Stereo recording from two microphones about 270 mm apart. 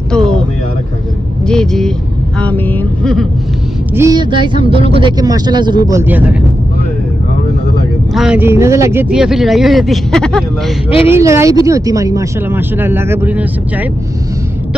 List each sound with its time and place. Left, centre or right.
0.1 s vehicle: centre
1.5 s speech: centre
3.9 s speech: centre
8.1 s speech: centre
11.1 s speech: centre